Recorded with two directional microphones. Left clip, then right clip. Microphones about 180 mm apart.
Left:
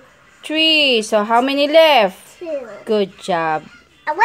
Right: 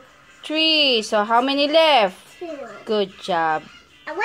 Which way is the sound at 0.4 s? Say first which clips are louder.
Left 4 dB; 25° left (ahead or behind).